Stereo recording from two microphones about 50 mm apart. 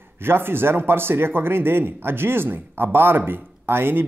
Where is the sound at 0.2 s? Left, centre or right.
Right.